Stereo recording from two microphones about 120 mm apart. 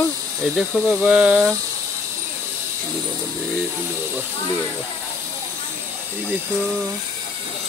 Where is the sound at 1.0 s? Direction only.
10° right (ahead or behind).